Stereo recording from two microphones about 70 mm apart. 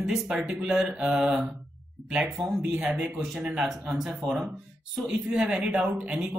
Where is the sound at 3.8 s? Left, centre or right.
Centre.